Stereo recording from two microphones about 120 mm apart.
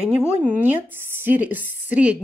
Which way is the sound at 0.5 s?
15° right (ahead or behind).